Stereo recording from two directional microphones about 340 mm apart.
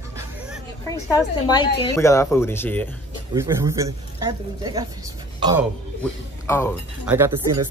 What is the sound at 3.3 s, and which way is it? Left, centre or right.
Speech, centre.